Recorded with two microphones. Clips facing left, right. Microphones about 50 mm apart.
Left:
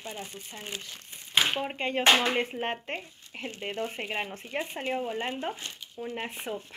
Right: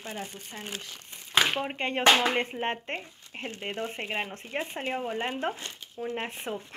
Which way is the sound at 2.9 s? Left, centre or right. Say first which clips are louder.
Right 1 dB; centre.